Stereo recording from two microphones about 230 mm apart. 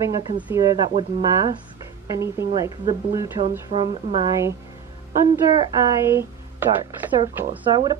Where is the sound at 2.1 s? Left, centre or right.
Centre.